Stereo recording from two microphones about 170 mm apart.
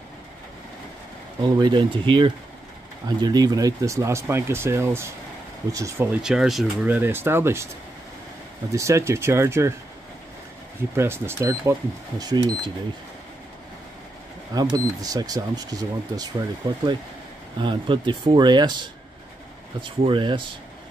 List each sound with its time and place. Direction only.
1.4 s speech: 25° right (ahead or behind)
6.2 s speech: centre (ahead or behind)
8.7 s speech: 15° right (ahead or behind)
11.0 s speech: 15° right (ahead or behind)
14.5 s speech: 20° right (ahead or behind)
19.8 s speech: 30° right (ahead or behind)